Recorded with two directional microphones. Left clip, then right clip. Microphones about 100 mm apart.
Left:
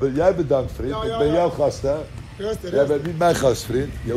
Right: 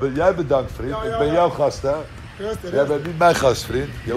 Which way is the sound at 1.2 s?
5° right (ahead or behind).